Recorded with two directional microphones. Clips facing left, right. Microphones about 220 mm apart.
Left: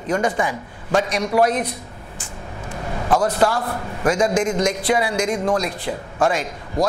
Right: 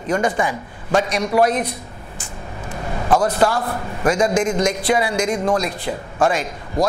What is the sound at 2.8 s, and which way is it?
Speech, 20° right (ahead or behind).